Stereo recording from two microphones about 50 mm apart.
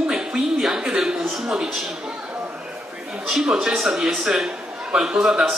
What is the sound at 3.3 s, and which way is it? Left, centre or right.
Speech, centre.